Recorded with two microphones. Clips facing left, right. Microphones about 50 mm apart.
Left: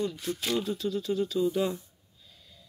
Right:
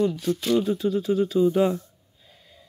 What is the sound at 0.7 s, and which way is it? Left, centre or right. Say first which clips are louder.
Speech: right 7 dB; centre.